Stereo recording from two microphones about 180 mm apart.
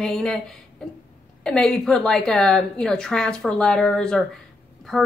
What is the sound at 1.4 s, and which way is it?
A woman's voice, 5° left (ahead or behind).